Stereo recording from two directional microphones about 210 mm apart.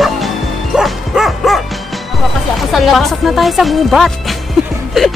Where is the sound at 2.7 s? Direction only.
Centre (ahead or behind).